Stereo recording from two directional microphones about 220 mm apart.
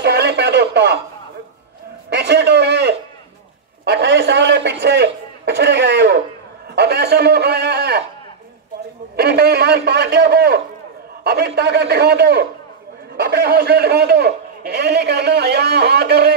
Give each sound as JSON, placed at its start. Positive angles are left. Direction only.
{"t": 0.0, "sound": "radio", "side_deg": -50}
{"t": 2.0, "sound": "a sound", "side_deg": -50}
{"t": 3.8, "sound": "a man's voice", "side_deg": -50}
{"t": 9.1, "sound": "a man's voice", "side_deg": -45}